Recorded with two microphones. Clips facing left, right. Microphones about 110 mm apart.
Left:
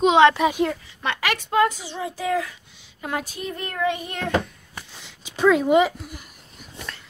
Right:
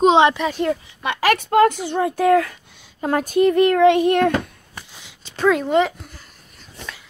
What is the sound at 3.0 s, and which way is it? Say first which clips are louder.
Speech: right 12 dB; 50° right (ahead or behind).